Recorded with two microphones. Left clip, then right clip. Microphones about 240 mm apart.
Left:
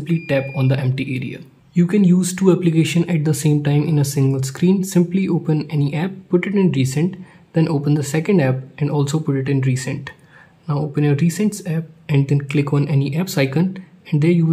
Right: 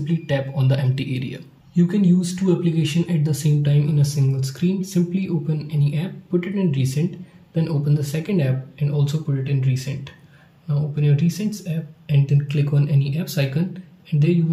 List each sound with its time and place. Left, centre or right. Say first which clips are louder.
0.0 s speech: left 4 dB; centre